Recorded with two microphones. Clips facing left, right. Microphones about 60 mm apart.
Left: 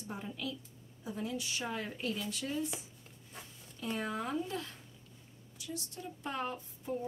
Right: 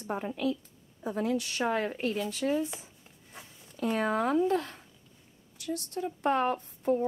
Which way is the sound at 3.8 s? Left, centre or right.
Right.